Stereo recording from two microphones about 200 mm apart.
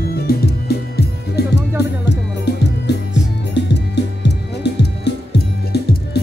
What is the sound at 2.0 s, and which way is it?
Music, 55° left (ahead or behind).